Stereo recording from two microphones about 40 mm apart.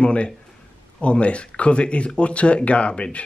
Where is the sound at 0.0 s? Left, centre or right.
Left.